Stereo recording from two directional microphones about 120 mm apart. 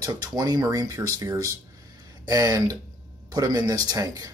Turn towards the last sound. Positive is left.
turn(degrees=-30)  # may be behind; listen again after turning